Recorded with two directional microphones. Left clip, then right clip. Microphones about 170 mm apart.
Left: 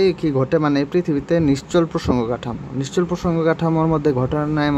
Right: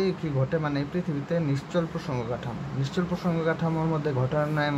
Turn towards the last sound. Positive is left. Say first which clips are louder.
# left 6 dB
turn(degrees=30)  # may be behind; listen again after turning